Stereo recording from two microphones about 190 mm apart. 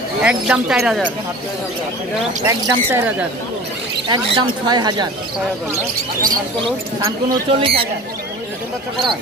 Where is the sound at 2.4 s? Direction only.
15° right (ahead or behind).